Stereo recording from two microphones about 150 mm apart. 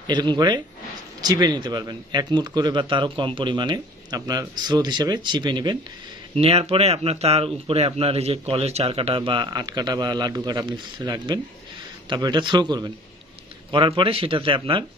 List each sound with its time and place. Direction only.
0.0 s speech: 30° right (ahead or behind)
6.4 s speech: 40° right (ahead or behind)